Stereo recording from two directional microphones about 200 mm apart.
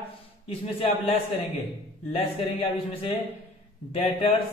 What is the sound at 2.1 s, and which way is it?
Speech, 30° left (ahead or behind).